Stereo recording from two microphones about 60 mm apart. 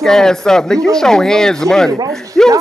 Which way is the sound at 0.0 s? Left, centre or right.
Centre.